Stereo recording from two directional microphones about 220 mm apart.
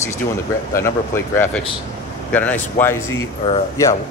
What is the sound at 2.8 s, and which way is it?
Speech, 10° left (ahead or behind).